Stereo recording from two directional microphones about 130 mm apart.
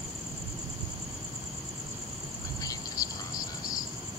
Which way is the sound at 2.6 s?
30° left (ahead or behind).